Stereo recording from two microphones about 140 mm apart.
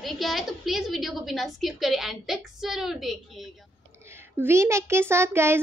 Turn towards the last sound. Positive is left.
turn(degrees=-15)  # may be behind; listen again after turning